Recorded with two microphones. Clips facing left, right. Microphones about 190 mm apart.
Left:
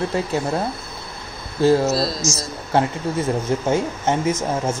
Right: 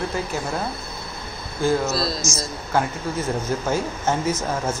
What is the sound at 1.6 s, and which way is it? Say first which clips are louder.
Speech: left 5 dB; 30° left (ahead or behind).